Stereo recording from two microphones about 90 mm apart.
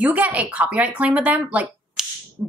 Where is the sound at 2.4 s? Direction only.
25° right (ahead or behind).